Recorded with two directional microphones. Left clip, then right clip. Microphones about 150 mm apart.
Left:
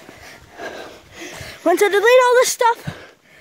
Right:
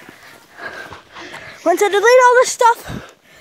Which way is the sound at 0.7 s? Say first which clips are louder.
Right 5 dB; 45° left (ahead or behind).